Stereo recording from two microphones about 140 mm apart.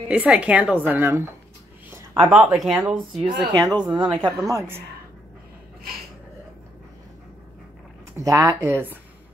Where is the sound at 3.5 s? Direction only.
30° right (ahead or behind).